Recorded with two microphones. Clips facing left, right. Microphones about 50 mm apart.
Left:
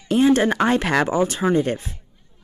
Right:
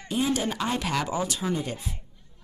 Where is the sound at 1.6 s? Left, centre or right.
Left.